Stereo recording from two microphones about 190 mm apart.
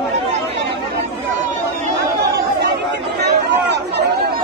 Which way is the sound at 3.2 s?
60° right (ahead or behind).